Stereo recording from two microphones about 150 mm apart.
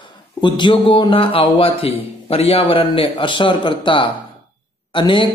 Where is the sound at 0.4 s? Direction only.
30° left (ahead or behind).